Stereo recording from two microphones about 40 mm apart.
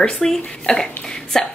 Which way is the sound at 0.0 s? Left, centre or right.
Left.